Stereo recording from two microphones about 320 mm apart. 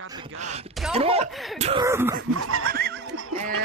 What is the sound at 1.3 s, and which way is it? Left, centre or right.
Speech, centre.